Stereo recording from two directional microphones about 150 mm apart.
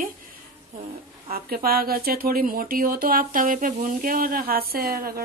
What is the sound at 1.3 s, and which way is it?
Speech, 80° right.